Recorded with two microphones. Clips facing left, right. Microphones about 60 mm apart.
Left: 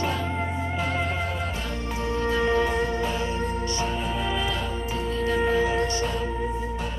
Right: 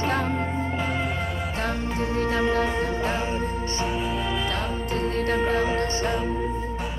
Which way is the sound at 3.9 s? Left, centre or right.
Centre.